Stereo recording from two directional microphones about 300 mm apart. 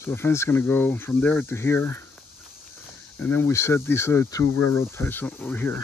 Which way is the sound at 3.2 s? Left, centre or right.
Centre.